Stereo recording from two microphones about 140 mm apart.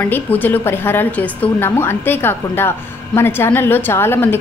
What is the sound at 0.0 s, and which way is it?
A woman's voice, 10° left (ahead or behind).